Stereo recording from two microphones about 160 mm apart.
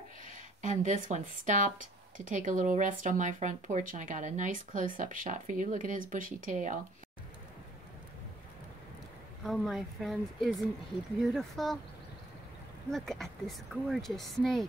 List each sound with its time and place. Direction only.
0.6 s speech: 50° right (ahead or behind)
9.4 s speech: centre (ahead or behind)
12.9 s speech: centre (ahead or behind)